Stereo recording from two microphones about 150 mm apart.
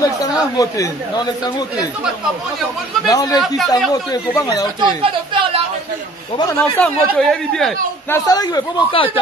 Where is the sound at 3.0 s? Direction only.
25° left (ahead or behind).